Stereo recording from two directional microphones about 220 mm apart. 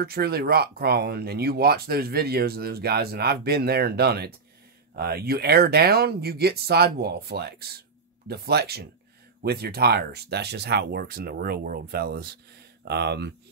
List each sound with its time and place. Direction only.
0.0 s speech: 45° right (ahead or behind)